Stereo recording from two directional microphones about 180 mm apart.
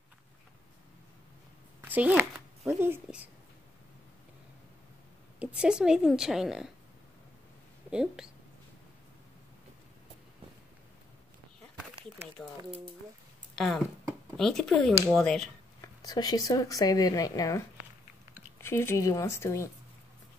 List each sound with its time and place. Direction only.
1.8 s speech: 10° right (ahead or behind)
5.4 s a woman's voice: 5° right (ahead or behind)
7.9 s a woman's voice: 5° right (ahead or behind)
12.4 s a woman's voice: centre (ahead or behind)
14.3 s a woman's voice: centre (ahead or behind)
16.0 s a woman's voice: 20° left (ahead or behind)